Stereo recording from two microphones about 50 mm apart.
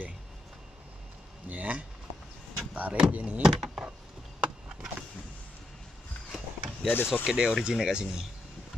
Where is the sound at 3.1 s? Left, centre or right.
Right.